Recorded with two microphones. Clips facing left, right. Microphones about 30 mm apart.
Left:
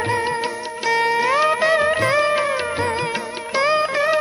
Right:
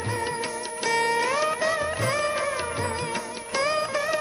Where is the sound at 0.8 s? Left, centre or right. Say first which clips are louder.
Left 6 dB; left.